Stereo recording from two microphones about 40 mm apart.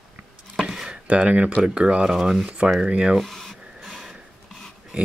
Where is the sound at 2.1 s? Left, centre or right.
Centre.